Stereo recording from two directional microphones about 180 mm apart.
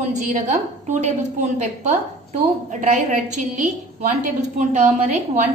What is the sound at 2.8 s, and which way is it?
A woman's voice, 45° right (ahead or behind).